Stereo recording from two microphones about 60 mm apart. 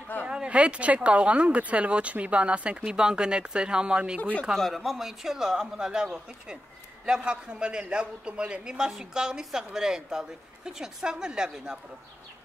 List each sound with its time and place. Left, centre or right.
0.2 s speech: centre
4.2 s speech: left
4.6 s a man's voice: centre